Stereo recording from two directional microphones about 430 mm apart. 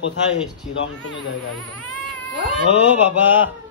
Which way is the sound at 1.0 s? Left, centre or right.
Left.